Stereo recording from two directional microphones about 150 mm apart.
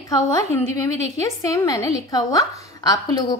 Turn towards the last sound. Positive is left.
turn(degrees=25)  # may be behind; listen again after turning